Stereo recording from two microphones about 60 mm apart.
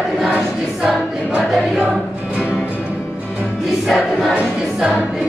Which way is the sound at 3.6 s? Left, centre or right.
Centre.